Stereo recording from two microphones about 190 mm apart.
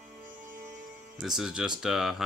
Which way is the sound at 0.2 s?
45° right (ahead or behind).